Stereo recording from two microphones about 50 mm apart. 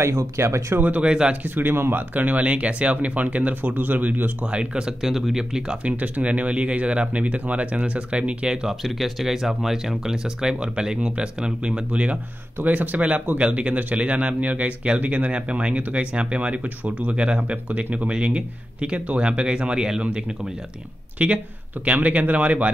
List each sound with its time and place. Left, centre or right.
0.0 s speech: right
0.7 s speech: right
1.0 s a man's voice: centre
1.3 s speech: right
4.5 s a man's voice: centre
5.0 s speech: centre
5.9 s a man's voice: right
8.6 s a man's voice: centre; by 22.7 s right